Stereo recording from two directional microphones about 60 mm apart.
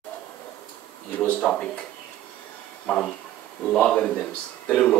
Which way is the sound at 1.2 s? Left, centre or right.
Centre.